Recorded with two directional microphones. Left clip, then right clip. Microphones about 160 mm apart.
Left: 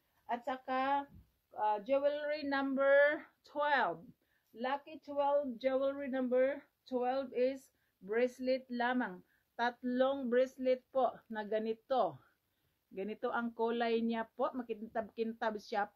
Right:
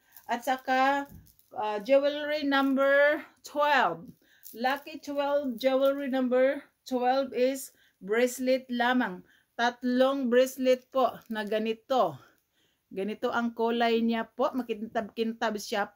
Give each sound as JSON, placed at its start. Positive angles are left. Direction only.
{"t": 0.3, "sound": "speech", "side_deg": -15}